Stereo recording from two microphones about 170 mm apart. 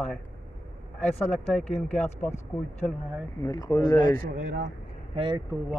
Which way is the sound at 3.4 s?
20° left (ahead or behind).